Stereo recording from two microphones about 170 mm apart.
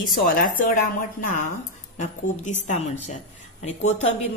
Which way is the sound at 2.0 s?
45° left (ahead or behind).